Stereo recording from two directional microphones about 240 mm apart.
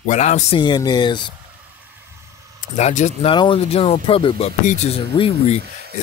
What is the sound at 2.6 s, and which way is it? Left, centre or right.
A man's voice, left.